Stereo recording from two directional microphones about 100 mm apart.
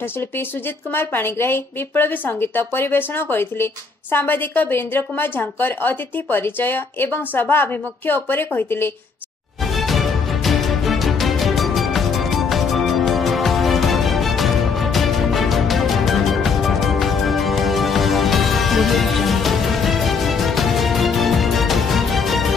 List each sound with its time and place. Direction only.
0.9 s a woman's voice: 20° left (ahead or behind)
9.8 s music: centre (ahead or behind)